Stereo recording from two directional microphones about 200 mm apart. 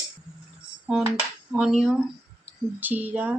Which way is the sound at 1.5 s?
5° right (ahead or behind).